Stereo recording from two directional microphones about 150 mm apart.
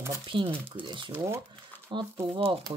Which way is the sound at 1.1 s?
15° right (ahead or behind).